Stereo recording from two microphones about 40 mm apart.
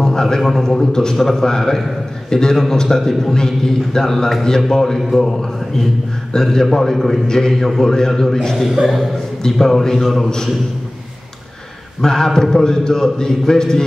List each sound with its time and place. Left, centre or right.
0.0 s a sound: centre
0.4 s a man's voice: centre
12.0 s a man's voice: centre